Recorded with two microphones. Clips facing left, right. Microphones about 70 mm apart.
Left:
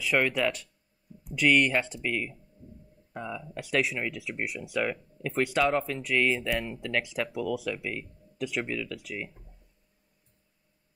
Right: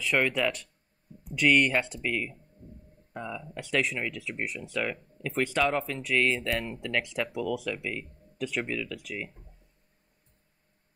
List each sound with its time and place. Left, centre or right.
0.0 s speech: centre
2.6 s speech: right
3.1 s speech: centre